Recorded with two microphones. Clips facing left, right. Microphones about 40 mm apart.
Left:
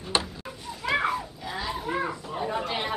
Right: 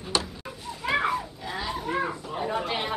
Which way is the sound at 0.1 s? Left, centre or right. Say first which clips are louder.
Left 1 dB; left.